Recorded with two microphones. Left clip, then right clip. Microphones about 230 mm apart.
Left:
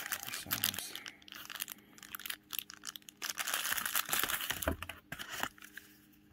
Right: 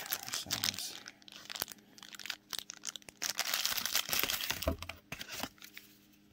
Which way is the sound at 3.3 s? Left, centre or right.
Right.